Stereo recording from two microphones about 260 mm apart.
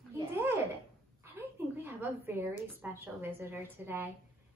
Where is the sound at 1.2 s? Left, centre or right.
Centre.